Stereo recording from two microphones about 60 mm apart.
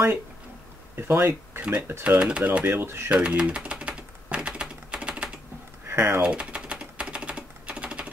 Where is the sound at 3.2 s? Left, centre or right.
Centre.